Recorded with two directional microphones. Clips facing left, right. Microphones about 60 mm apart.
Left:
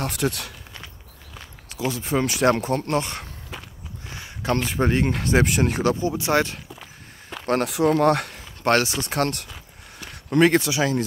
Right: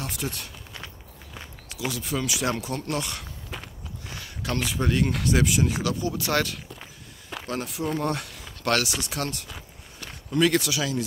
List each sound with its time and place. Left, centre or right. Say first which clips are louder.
0.0 s speech: left 7 dB; left
1.9 s speech: left 5 dB; left
3.5 s walk: even; centre
4.1 s speech: left 6 dB; left
6.8 s walk: left 2 dB; centre
7.6 s speech: left 10 dB; left
8.3 s speech: left 5 dB; left
10.4 s speech: left 4 dB; left